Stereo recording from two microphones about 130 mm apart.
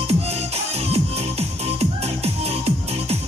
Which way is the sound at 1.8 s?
55° right (ahead or behind).